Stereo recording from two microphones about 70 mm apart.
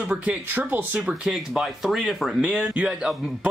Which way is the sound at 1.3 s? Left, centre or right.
Centre.